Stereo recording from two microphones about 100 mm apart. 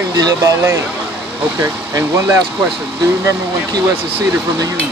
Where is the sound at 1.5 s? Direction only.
30° right (ahead or behind).